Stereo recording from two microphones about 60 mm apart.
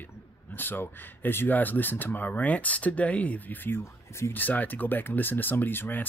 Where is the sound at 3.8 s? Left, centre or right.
Left.